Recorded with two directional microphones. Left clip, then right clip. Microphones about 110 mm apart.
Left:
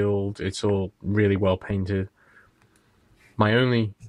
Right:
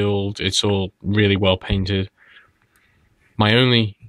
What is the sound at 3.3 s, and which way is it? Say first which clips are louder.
Speech: right 5 dB; 15° right (ahead or behind).